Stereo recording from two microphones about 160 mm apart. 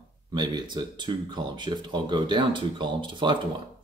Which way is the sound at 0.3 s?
30° right (ahead or behind).